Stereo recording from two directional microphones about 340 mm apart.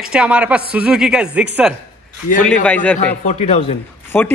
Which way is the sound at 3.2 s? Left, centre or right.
Centre.